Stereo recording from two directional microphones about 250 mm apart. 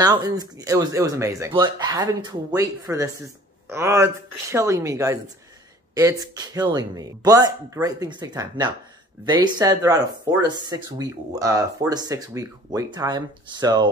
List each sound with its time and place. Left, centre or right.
0.0 s speech: centre